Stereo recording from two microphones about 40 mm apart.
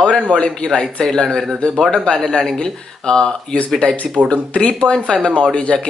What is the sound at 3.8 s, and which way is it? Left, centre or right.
Speech, left.